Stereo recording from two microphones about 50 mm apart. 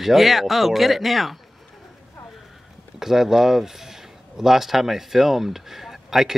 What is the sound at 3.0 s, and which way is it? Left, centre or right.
Speech, centre.